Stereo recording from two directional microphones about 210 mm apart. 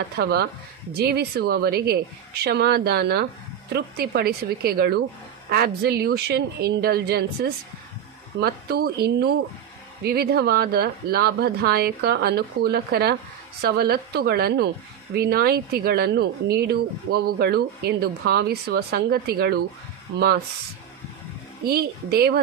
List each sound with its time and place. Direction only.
0.2 s speech: 50° right (ahead or behind)
21.6 s speech: 50° right (ahead or behind)